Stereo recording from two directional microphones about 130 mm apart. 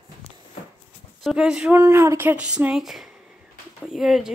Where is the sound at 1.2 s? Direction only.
5° right (ahead or behind).